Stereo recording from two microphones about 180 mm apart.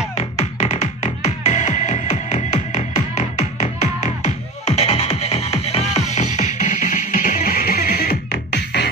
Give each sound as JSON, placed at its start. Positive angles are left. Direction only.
{"t": 0.1, "sound": "music", "side_deg": 35}